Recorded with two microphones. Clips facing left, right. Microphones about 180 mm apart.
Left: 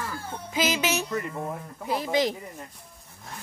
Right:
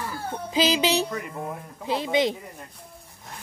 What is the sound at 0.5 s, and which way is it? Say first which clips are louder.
Speech: right 4 dB; 35° right (ahead or behind).